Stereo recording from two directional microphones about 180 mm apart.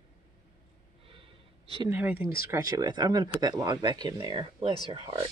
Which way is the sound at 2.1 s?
55° left (ahead or behind).